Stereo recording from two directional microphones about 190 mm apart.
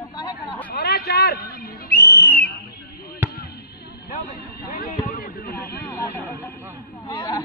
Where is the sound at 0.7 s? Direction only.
55° left (ahead or behind).